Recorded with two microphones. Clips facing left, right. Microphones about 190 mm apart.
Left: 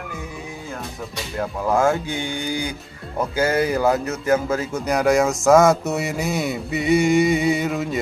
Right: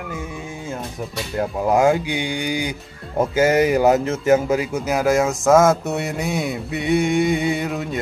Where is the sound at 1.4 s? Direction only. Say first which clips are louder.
Right 3 dB; 20° right (ahead or behind).